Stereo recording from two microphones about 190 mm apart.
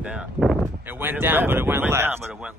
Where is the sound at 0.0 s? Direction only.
5° right (ahead or behind).